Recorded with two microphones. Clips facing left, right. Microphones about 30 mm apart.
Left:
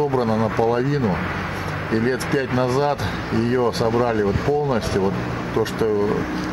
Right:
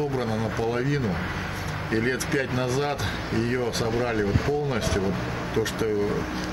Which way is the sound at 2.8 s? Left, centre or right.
Centre.